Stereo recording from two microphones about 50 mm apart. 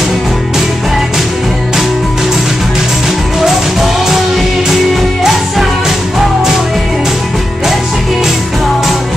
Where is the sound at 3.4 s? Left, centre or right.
Centre.